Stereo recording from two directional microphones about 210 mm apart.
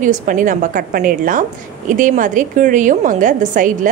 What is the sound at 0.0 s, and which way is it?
A woman's voice, 40° right (ahead or behind).